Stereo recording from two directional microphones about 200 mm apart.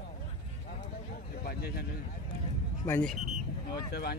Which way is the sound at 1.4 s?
50° left (ahead or behind).